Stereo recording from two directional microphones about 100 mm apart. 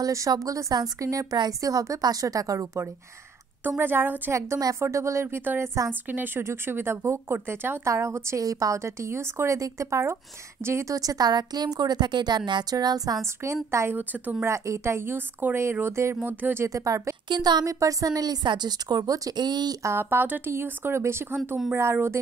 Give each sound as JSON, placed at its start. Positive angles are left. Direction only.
{"t": 0.0, "sound": "a woman's voice", "side_deg": -35}
{"t": 16.6, "sound": "a woman's voice", "side_deg": -35}
{"t": 17.3, "sound": "a woman's voice", "side_deg": -45}
{"t": 19.8, "sound": "speech", "side_deg": -25}